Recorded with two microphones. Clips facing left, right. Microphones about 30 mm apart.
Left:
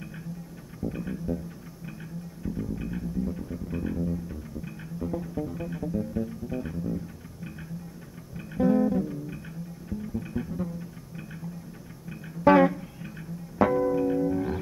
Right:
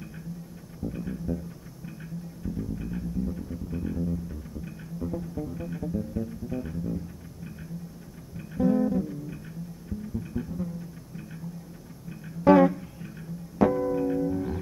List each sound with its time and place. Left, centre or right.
0.8 s music: centre
2.4 s music: centre
8.4 s music: centre
14.3 s music: centre